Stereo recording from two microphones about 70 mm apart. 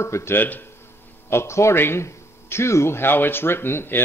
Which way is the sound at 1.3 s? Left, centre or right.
Left.